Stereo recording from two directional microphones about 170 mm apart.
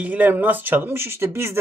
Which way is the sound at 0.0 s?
10° right (ahead or behind).